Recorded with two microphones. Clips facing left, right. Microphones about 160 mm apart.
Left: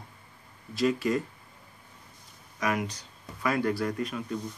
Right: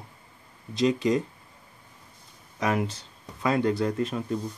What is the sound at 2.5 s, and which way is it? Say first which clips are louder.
Speech: right 3 dB; 25° right (ahead or behind).